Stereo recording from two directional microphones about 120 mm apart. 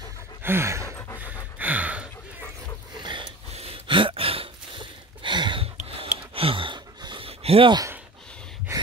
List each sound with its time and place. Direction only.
0.4 s a sound: 20° right (ahead or behind)
0.8 s pant: 20° left (ahead or behind)
1.2 s gasp: 15° right (ahead or behind)
3.0 s a sound: 40° right (ahead or behind)
3.5 s gasp: 55° right (ahead or behind)
5.8 s gasp: 50° right (ahead or behind)